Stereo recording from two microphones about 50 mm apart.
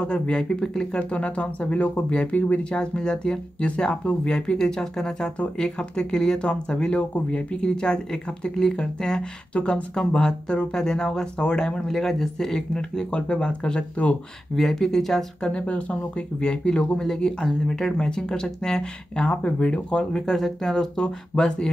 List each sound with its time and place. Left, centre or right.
0.0 s speech: centre
1.1 s speech: left
9.5 s speech: left
14.5 s speech: centre
15.4 s speech: left
20.1 s speech: centre